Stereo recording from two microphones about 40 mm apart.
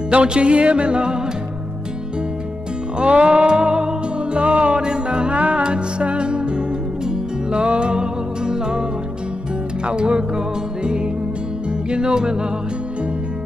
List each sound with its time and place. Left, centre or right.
0.1 s music: right
3.0 s music: right
9.8 s music: right